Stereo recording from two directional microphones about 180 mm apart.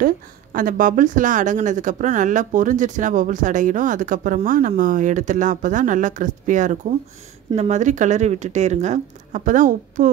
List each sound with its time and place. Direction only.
0.0 s a woman's voice: 50° right (ahead or behind)